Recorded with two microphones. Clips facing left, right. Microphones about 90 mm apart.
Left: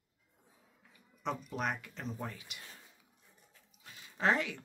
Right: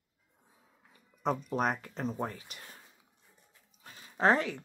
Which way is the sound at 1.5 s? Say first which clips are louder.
Right 6 dB; 40° right (ahead or behind).